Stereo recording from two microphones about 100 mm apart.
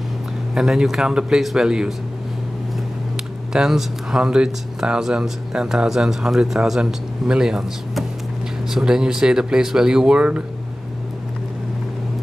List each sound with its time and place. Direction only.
0.6 s speech: 5° right (ahead or behind)
3.5 s speech: 5° right (ahead or behind)